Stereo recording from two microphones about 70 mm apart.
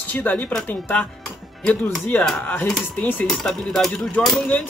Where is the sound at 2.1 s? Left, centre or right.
Left.